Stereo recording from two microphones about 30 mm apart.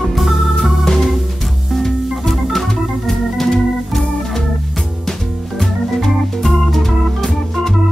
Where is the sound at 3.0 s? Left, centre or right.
Centre.